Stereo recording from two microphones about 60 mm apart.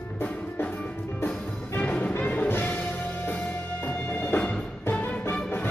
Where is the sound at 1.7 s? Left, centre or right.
Left.